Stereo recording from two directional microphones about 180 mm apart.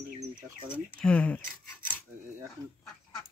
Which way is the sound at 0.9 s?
5° left (ahead or behind).